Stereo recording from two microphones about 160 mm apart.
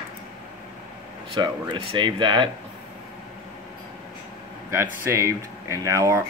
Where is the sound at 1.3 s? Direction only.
30° right (ahead or behind).